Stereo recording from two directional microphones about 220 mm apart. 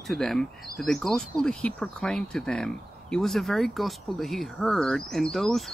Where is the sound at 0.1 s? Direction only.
Centre (ahead or behind).